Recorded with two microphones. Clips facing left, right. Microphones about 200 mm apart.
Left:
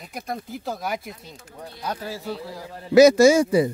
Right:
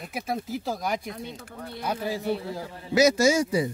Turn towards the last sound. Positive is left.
turn(degrees=55)  # may be behind; listen again after turning